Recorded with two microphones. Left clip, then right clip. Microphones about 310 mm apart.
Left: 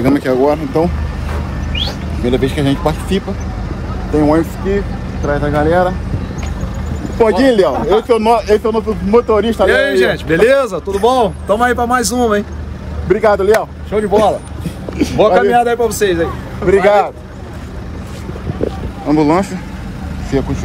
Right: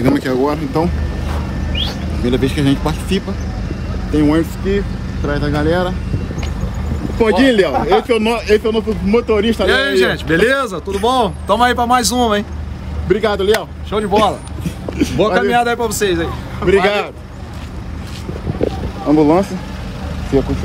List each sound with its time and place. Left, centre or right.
0.0 s a man's voice: centre
2.2 s a man's voice: centre
7.4 s speech: centre
9.7 s a man's voice: centre
13.1 s a man's voice: centre
19.1 s speech: left